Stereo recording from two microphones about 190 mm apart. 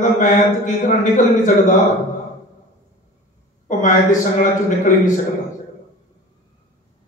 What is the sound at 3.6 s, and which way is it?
A man's voice, 40° left (ahead or behind).